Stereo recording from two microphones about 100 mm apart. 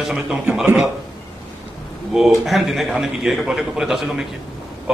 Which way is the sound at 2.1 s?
5° right (ahead or behind).